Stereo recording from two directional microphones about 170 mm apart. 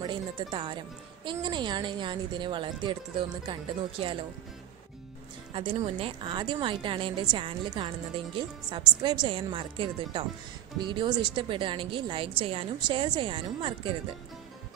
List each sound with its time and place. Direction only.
0.0 s speech: 25° right (ahead or behind)
5.5 s speech: 35° right (ahead or behind)